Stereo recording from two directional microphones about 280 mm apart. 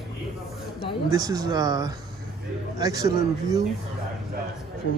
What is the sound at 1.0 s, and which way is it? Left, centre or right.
Speech, centre.